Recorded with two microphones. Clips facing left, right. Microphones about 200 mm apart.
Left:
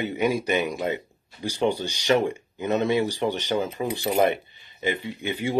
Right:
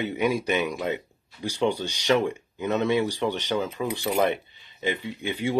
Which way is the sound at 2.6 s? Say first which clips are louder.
Left 1 dB; 40° left (ahead or behind).